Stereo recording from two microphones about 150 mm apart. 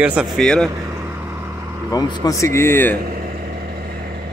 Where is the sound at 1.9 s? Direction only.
25° left (ahead or behind).